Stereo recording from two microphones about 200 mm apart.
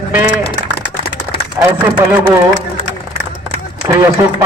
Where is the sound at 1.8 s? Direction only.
10° right (ahead or behind).